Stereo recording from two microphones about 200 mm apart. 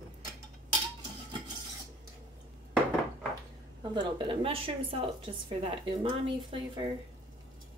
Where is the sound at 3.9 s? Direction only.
25° right (ahead or behind).